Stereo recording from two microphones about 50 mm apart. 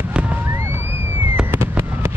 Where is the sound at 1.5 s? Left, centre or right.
Right.